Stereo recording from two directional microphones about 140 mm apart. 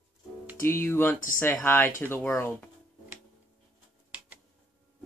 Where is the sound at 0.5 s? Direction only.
15° left (ahead or behind).